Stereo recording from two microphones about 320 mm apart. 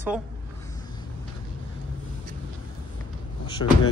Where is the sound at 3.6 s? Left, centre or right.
Left.